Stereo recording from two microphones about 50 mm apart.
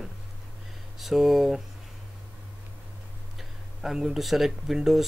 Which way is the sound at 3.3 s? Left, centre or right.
Centre.